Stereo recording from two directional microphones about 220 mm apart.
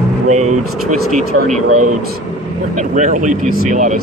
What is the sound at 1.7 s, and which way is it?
Speech, 90° right.